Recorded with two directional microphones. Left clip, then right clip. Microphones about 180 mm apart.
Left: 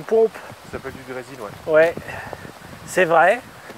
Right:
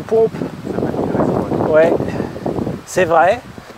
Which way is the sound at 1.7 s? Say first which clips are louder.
Right 3 dB; 5° left (ahead or behind).